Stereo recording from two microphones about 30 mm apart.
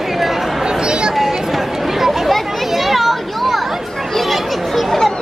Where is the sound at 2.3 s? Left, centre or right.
Centre.